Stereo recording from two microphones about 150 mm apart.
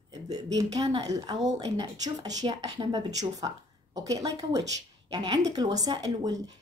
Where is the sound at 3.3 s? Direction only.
25° right (ahead or behind).